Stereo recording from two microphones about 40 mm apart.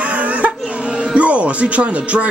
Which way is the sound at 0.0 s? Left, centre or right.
Right.